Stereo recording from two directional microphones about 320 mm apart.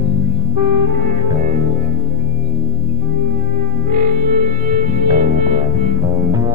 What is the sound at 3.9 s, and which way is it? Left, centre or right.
Music, right.